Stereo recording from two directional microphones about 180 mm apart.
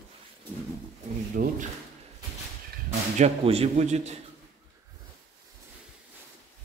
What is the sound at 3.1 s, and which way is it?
A man's voice, 35° right (ahead or behind).